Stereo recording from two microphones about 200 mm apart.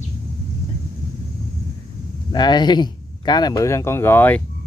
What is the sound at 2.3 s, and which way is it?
Speech, 20° left (ahead or behind).